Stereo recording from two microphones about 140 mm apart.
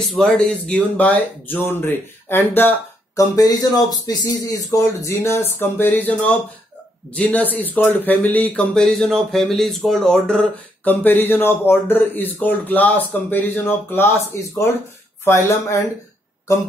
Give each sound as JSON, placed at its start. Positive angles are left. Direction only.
{"t": 0.1, "sound": "speech", "side_deg": 5}
{"t": 3.2, "sound": "speech", "side_deg": 25}